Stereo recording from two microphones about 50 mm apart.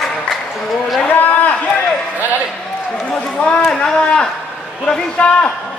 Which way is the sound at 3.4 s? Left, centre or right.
Left.